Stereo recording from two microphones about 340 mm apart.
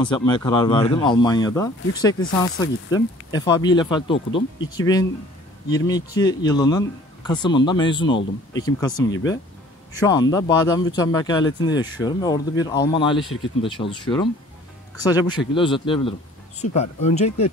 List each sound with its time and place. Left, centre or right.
0.0 s speech: centre